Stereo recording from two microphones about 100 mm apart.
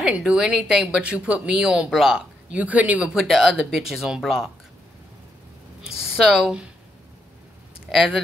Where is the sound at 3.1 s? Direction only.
Centre (ahead or behind).